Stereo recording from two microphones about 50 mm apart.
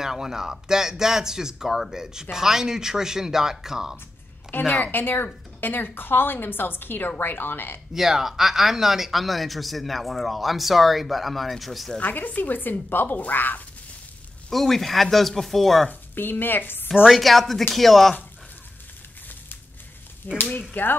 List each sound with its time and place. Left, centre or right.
0.0 s speech: centre
4.5 s speech: left
7.9 s speech: centre
12.0 s a woman's voice: left
14.5 s speech: centre
15.9 s speech: left
17.1 s speech: centre
20.3 s a woman's voice: left